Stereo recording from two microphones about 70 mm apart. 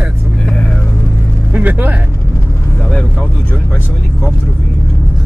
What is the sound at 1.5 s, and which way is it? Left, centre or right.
Vehicle, right.